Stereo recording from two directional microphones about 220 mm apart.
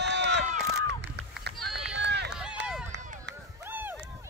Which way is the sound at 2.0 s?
50° right (ahead or behind).